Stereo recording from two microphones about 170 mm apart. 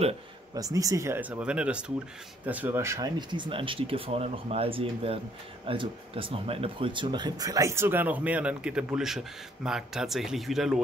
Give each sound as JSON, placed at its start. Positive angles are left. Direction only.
{"t": 0.6, "sound": "speech", "side_deg": -20}